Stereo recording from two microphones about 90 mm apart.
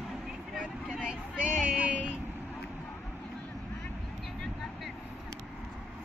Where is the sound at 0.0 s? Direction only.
Centre (ahead or behind).